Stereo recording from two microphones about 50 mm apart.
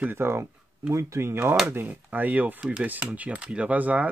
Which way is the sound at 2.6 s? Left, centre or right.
Centre.